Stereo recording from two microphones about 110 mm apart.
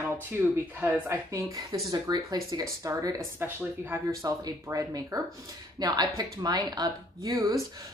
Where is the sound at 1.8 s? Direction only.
35° right (ahead or behind).